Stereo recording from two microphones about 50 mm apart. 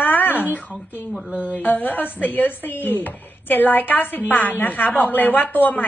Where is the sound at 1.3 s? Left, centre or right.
Right.